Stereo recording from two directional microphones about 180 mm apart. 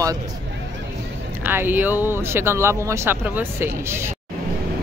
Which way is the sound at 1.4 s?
10° right (ahead or behind).